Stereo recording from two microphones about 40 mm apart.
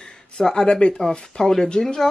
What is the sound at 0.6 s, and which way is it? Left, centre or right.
Speech, centre.